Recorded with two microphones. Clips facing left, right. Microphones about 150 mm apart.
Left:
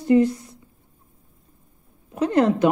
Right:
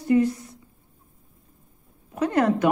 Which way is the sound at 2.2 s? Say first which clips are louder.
Left 2 dB; 25° left (ahead or behind).